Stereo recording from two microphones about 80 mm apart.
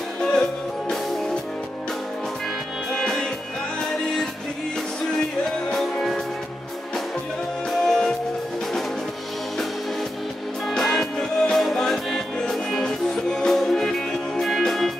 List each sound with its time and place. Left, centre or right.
0.2 s music: centre
3.0 s music: centre
7.8 s music: centre
10.7 s music: centre